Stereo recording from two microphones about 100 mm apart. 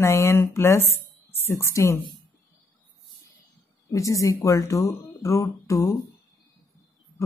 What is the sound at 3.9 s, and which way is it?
Speech, 35° left (ahead or behind).